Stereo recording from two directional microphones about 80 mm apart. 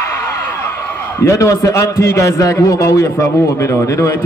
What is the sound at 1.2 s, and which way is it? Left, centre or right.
A man's voice, left.